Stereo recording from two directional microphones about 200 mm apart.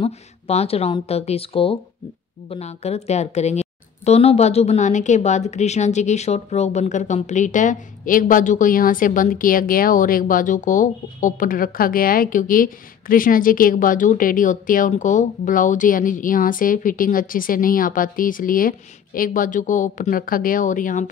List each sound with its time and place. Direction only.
0.0 s a woman's voice: 30° left (ahead or behind)